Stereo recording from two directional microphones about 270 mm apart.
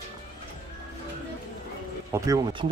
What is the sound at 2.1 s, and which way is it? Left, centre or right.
Speech, centre.